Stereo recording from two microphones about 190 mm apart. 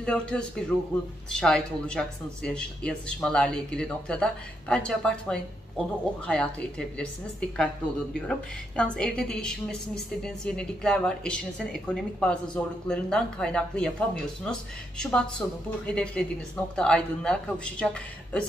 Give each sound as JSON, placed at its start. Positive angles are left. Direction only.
{"t": 0.0, "sound": "speech", "side_deg": 5}